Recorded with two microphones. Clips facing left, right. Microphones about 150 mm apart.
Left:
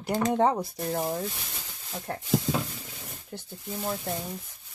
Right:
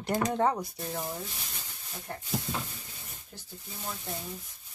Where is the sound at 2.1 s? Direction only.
70° left (ahead or behind).